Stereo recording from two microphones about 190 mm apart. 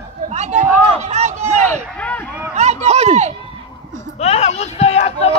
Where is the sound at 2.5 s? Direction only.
35° right (ahead or behind).